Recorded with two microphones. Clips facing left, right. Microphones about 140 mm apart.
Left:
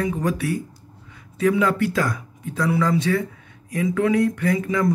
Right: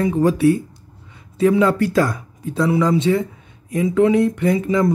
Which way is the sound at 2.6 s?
20° right (ahead or behind).